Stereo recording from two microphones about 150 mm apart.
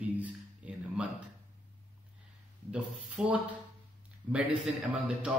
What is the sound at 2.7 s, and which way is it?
A man's voice, 5° right (ahead or behind).